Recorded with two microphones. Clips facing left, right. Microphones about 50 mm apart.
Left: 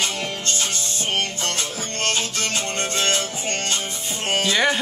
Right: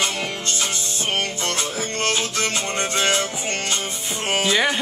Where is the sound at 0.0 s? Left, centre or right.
Centre.